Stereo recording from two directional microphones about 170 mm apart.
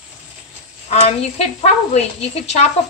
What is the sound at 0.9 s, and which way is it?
A woman's voice, 40° left (ahead or behind).